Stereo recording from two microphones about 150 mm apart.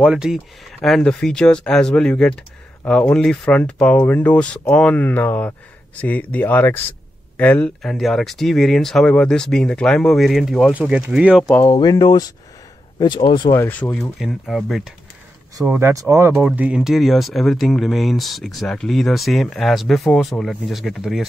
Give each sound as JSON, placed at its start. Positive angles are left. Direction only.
{"t": 0.0, "sound": "speech", "side_deg": -5}
{"t": 11.8, "sound": "speech", "side_deg": 25}
{"t": 13.6, "sound": "speech", "side_deg": 15}
{"t": 14.2, "sound": "speech", "side_deg": 0}
{"t": 15.6, "sound": "speech", "side_deg": -15}
{"t": 16.4, "sound": "speech", "side_deg": -10}